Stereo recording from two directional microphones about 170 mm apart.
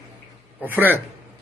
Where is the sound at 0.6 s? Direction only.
10° right (ahead or behind).